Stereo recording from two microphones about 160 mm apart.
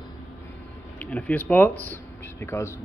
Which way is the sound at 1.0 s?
10° left (ahead or behind).